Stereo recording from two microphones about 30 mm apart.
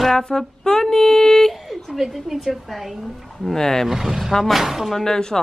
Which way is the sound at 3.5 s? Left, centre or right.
Centre.